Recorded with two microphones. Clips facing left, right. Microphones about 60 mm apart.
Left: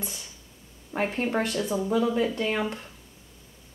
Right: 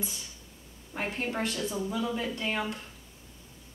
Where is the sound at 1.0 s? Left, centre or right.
Centre.